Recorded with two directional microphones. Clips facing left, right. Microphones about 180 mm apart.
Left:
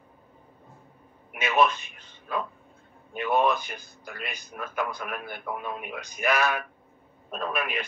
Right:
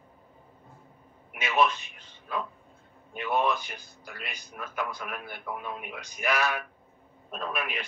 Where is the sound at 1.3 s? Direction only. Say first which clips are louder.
Left 2 dB; 50° left (ahead or behind).